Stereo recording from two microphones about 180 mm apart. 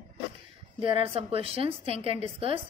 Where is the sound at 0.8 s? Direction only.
30° right (ahead or behind).